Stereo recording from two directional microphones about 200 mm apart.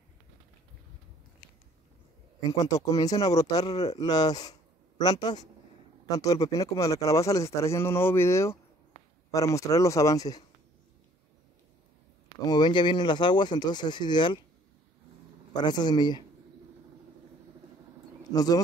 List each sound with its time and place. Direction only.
2.5 s speech: 15° left (ahead or behind)
12.4 s speech: 20° left (ahead or behind)
15.5 s speech: 20° left (ahead or behind)
18.3 s speech: 20° left (ahead or behind)